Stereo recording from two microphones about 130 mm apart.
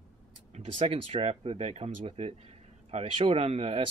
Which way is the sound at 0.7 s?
45° right (ahead or behind).